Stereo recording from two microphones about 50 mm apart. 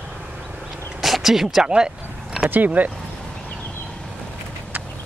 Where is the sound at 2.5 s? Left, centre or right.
Right.